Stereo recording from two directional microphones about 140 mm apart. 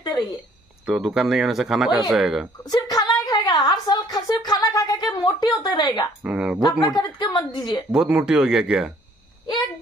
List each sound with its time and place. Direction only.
0.8 s speech: 5° right (ahead or behind)
2.6 s a sound: 30° left (ahead or behind)
5.6 s a woman's voice: 30° left (ahead or behind)
6.2 s speech: 10° right (ahead or behind)
6.8 s a woman's voice: 30° left (ahead or behind)
7.9 s speech: 5° right (ahead or behind)